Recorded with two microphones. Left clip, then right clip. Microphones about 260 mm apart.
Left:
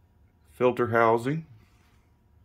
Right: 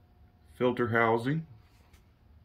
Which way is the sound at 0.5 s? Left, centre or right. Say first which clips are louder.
Left 4 dB; centre.